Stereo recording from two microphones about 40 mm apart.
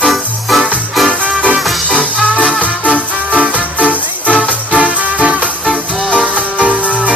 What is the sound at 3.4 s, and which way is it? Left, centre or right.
Music, right.